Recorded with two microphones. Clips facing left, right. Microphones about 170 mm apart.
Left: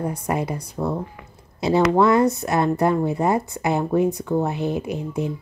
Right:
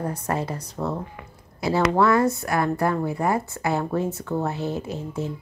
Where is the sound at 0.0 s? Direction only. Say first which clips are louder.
Left 2 dB; 10° left (ahead or behind).